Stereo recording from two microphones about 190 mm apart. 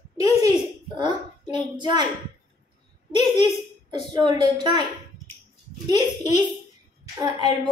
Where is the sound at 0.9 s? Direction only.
25° right (ahead or behind).